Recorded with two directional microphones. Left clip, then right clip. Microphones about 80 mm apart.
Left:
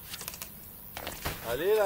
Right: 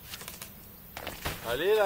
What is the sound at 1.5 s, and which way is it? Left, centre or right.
Speech, right.